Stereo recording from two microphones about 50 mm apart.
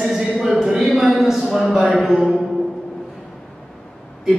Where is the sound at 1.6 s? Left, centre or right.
Right.